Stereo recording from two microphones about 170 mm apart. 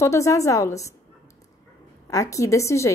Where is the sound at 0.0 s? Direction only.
20° left (ahead or behind).